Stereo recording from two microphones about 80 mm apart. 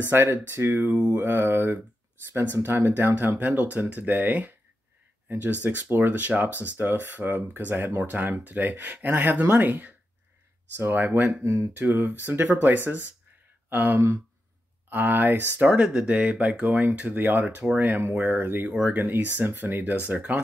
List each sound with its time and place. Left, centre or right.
0.1 s speech: right